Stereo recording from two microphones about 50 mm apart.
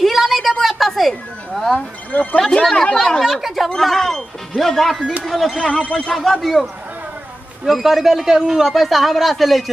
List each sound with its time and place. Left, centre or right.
0.0 s a sound: centre
1.8 s speech: left
3.3 s a sound: centre
3.7 s music: centre
5.2 s speech: centre
5.6 s speech: centre
6.1 s speech: centre